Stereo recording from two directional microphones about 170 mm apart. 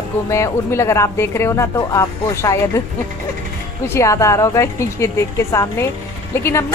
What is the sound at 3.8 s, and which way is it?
Speech, 15° left (ahead or behind).